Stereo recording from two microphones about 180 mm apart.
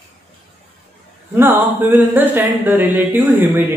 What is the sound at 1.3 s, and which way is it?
Speech, 10° right (ahead or behind).